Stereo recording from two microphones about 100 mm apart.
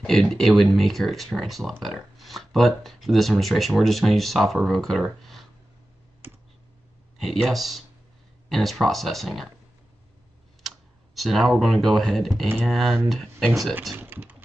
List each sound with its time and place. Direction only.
0.0 s speech: 5° left (ahead or behind)
5.0 s a sound: centre (ahead or behind)
7.2 s speech: centre (ahead or behind)
11.1 s speech: centre (ahead or behind)
13.9 s speech: 20° right (ahead or behind)